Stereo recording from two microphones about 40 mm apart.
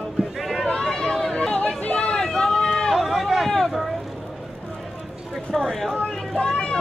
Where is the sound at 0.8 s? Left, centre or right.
Centre.